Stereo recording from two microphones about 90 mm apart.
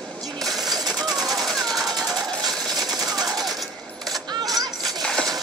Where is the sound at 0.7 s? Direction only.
45° right (ahead or behind).